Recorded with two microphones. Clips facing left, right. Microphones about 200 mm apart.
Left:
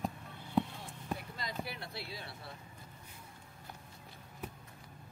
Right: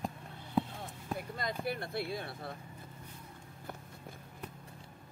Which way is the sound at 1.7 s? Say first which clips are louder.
Right 9 dB; 50° right (ahead or behind).